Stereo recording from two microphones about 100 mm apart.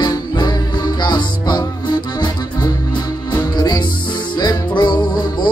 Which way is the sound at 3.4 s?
45° left (ahead or behind).